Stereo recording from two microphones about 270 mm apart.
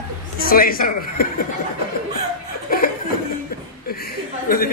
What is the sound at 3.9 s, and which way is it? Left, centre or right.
Chuckle, left.